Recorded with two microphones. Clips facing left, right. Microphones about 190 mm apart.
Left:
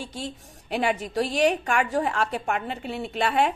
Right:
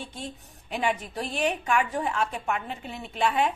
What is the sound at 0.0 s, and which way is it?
A woman's voice, 90° left.